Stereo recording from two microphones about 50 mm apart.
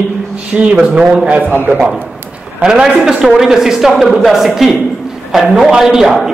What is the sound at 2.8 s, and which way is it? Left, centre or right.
A man's voice, centre.